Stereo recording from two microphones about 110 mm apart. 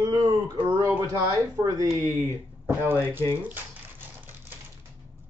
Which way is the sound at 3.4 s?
15° right (ahead or behind).